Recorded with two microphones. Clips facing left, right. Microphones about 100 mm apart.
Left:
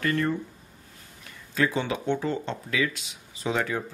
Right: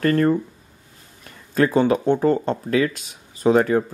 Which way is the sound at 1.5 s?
45° right (ahead or behind).